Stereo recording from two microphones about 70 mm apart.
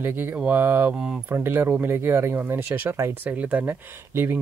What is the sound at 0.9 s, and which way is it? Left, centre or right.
Speech, centre.